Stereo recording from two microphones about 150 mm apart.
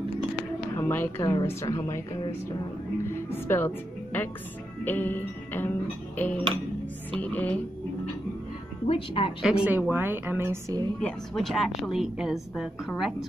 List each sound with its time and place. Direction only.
0.7 s a woman's voice: 15° left (ahead or behind)
1.2 s a woman's voice: 25° left (ahead or behind)
3.1 s a woman's voice: 15° left (ahead or behind)
6.1 s music: 10° left (ahead or behind)
7.2 s a woman's voice: 10° left (ahead or behind)
8.8 s speech: 40° left (ahead or behind)
9.4 s a woman's voice: 5° right (ahead or behind)
11.0 s a woman's voice: 5° left (ahead or behind)